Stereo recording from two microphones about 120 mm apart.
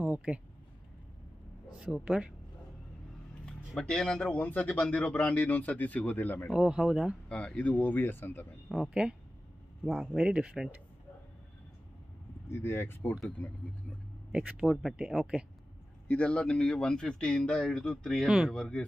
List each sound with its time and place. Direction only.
0.0 s a sound: 10° right (ahead or behind)
1.7 s speech: 5° right (ahead or behind)
3.4 s a man's voice: 5° left (ahead or behind)
6.5 s speech: 5° right (ahead or behind)
7.2 s a man's voice: 10° left (ahead or behind)
8.6 s speech: centre (ahead or behind)
12.4 s a man's voice: 20° left (ahead or behind)
14.3 s speech: 10° right (ahead or behind)
16.1 s speech: 10° left (ahead or behind)